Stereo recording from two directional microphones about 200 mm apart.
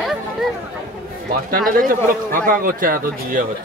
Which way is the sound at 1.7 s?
40° right (ahead or behind).